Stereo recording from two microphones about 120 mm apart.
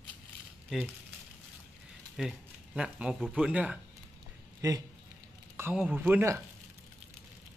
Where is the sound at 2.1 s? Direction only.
5° right (ahead or behind).